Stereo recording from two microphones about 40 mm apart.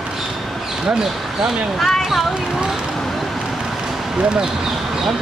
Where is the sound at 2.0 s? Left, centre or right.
Centre.